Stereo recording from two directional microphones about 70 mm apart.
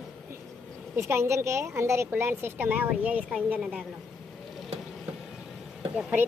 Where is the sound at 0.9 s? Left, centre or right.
Right; by 3.8 s centre.